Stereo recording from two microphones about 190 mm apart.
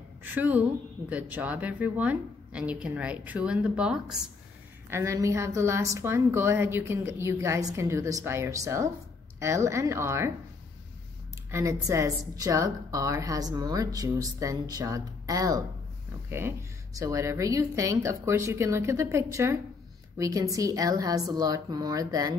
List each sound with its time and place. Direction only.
0.2 s a woman's voice: 10° right (ahead or behind)
4.8 s a woman's voice: 15° right (ahead or behind)
11.5 s a woman's voice: 15° right (ahead or behind)